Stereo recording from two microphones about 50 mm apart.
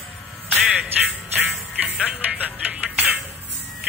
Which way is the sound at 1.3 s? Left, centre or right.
Right.